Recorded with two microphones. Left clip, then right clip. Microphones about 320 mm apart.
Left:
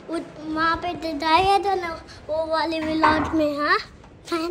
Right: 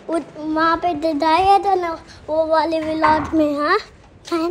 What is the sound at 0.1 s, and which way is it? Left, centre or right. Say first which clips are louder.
A child's voice: right 7 dB; centre.